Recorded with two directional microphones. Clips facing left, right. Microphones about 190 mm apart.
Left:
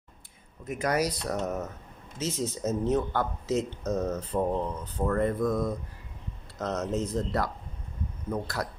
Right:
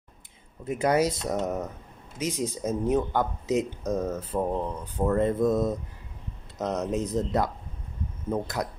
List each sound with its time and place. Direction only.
0.7 s speech: 30° right (ahead or behind); by 4.5 s 5° right (ahead or behind)
4.9 s speech: 20° right (ahead or behind)